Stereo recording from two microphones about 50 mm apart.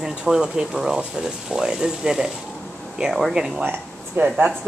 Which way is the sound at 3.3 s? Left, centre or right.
Centre.